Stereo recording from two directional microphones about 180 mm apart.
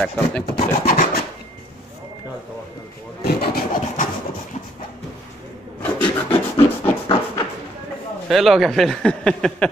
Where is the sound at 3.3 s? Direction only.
60° left (ahead or behind).